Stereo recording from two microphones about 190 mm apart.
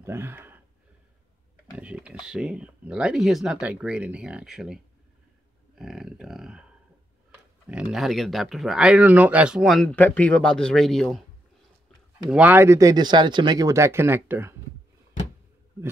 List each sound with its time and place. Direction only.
0.0 s speech: 10° right (ahead or behind)
1.8 s speech: 5° right (ahead or behind)
5.8 s speech: centre (ahead or behind)
12.3 s speech: 10° right (ahead or behind)